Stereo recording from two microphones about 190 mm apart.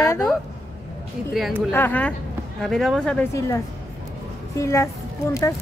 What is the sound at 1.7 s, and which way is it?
Speech, 10° left (ahead or behind).